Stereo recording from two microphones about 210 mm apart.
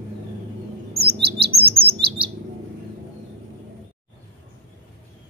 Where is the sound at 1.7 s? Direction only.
25° right (ahead or behind).